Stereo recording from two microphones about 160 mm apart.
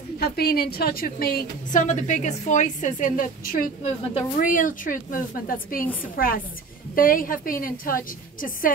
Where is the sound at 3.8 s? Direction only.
40° left (ahead or behind).